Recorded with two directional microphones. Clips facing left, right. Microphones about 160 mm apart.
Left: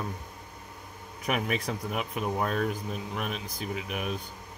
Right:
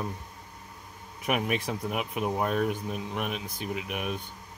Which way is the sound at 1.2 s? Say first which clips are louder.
Right 1 dB; 5° right (ahead or behind).